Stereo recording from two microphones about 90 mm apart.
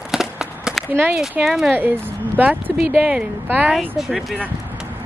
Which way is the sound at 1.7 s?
20° right (ahead or behind).